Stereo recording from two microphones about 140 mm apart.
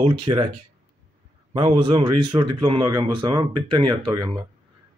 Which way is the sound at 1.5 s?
35° right (ahead or behind).